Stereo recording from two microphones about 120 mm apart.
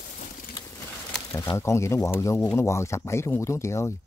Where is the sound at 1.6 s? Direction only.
25° left (ahead or behind).